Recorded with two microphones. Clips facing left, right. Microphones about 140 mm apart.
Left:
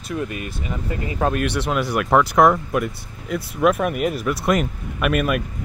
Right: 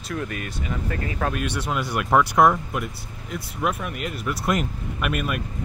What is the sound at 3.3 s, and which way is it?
Speech, 90° left.